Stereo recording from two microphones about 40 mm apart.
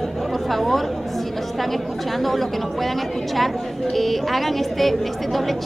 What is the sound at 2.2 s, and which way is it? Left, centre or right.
Speech, centre.